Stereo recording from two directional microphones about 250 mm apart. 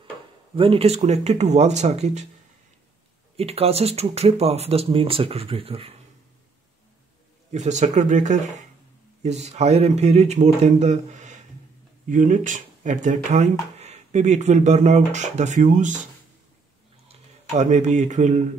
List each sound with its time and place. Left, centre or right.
0.6 s speech: right
3.3 s speech: right
7.5 s speech: right
17.1 s speech: right